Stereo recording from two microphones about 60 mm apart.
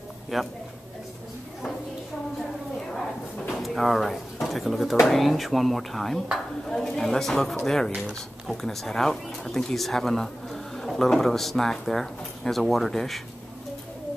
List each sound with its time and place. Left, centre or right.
0.3 s speech: centre
3.4 s drawer open or close: centre
5.0 s speech: centre